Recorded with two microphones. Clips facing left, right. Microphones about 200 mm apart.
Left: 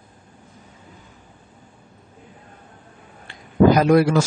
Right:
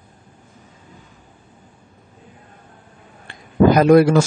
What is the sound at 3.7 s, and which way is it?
Speech, 50° right (ahead or behind).